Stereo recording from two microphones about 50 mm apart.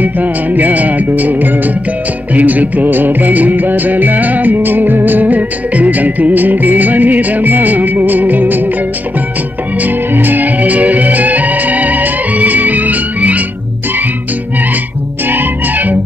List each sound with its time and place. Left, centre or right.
0.0 s music: right
9.8 s music: right
15.2 s music: right